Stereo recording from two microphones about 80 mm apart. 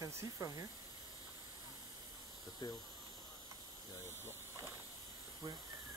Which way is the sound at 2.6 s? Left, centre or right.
Left.